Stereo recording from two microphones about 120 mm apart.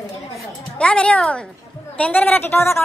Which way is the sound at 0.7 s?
10° left (ahead or behind).